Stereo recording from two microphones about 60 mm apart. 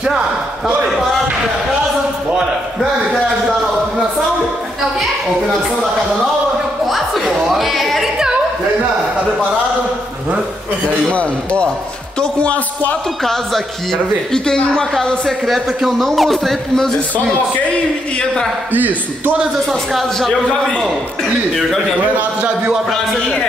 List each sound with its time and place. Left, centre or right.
2.8 s a sound: centre
7.4 s a sound: centre
11.1 s a man's voice: centre
13.2 s a man's voice: centre
15.2 s a man's voice: centre
18.7 s a man's voice: right
19.9 s a man's voice: centre